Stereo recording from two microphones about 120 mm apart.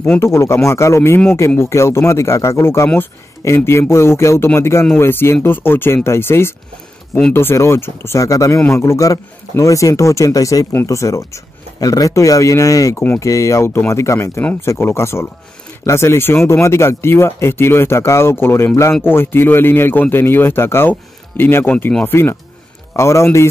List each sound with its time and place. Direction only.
0.2 s a man's voice: 25° left (ahead or behind)